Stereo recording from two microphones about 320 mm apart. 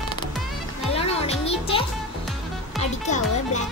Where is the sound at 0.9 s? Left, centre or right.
Centre.